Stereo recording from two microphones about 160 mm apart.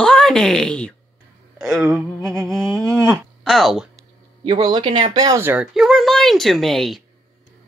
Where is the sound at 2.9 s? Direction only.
20° right (ahead or behind).